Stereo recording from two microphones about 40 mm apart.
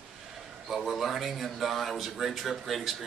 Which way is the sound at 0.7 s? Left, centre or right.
Centre.